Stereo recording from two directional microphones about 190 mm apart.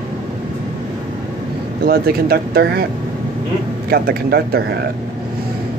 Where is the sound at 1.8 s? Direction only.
55° right (ahead or behind).